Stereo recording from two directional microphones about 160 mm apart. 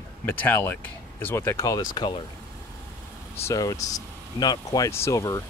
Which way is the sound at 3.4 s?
20° left (ahead or behind).